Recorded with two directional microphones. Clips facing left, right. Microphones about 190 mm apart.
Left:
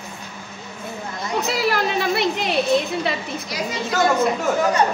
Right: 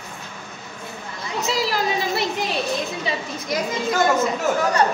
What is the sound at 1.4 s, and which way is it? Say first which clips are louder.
A woman's voice: even; 60° left (ahead or behind).